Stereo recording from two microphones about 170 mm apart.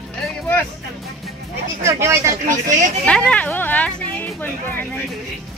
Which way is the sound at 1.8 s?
15° right (ahead or behind).